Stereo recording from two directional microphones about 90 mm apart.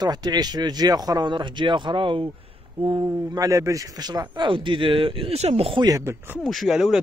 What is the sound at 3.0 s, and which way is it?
Speech, 45° right (ahead or behind).